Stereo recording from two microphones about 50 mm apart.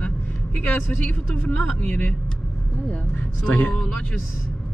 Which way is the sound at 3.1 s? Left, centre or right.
Left.